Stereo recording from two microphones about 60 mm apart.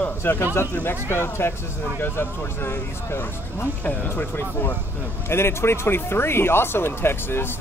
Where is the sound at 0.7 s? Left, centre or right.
Left.